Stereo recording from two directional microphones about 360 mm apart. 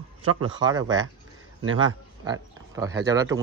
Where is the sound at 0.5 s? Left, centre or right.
Centre.